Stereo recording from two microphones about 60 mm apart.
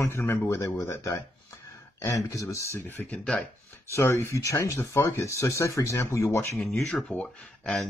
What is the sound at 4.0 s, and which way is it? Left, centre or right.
Speech, left.